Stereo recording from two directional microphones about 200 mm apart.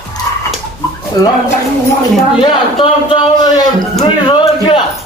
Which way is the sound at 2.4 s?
25° left (ahead or behind).